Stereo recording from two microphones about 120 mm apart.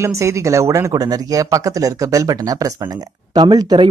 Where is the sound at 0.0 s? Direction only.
25° right (ahead or behind).